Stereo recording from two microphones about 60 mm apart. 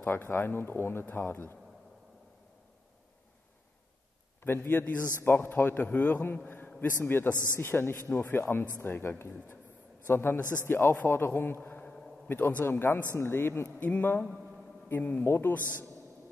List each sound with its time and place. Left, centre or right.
0.0 s speech: left
4.4 s a man's voice: left
10.4 s a man's voice: right
10.7 s speech: left
11.8 s a sound: centre
12.3 s speech: left
13.7 s speech: left
15.2 s speech: left